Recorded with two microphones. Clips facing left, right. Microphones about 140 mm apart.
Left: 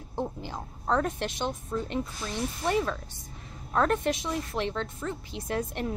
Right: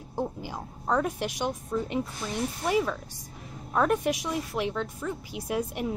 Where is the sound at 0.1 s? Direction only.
10° right (ahead or behind).